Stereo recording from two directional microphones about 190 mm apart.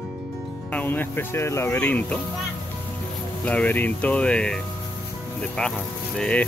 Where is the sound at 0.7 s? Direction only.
10° left (ahead or behind).